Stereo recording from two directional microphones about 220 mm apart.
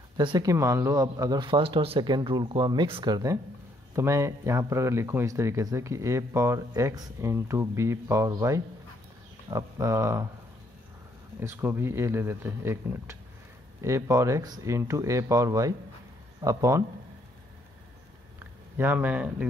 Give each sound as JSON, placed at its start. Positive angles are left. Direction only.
{"t": 0.2, "sound": "speech", "side_deg": -20}
{"t": 11.3, "sound": "speech", "side_deg": -10}
{"t": 18.8, "sound": "speech", "side_deg": -10}